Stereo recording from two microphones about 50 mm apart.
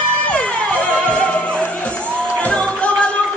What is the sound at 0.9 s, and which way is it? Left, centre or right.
Music, centre.